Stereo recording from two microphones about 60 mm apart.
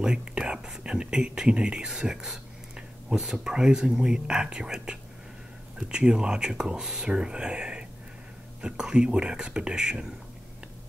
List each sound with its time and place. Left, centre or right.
0.0 s speech: centre